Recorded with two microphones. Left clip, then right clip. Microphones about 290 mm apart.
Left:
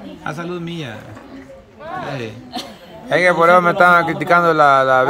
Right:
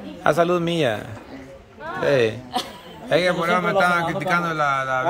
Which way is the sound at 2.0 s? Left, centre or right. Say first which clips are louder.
Right 12 dB; centre.